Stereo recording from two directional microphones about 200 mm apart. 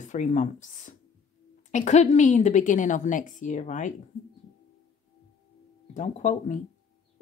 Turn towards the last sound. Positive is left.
turn(degrees=35)  # may be behind; listen again after turning